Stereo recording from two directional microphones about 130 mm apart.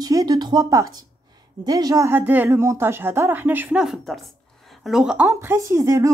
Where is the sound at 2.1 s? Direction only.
15° right (ahead or behind).